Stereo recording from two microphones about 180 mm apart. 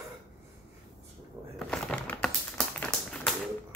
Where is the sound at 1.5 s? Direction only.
5° left (ahead or behind).